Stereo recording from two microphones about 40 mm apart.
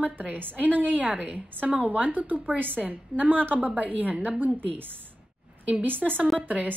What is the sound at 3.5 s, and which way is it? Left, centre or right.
Speech, right.